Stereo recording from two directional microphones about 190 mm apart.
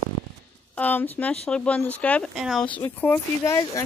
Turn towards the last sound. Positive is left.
turn(degrees=10)  # may be behind; listen again after turning